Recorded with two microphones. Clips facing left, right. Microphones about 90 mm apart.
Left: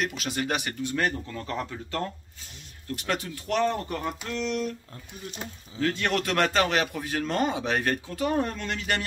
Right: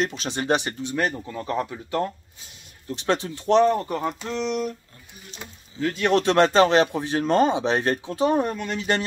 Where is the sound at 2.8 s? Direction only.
25° right (ahead or behind).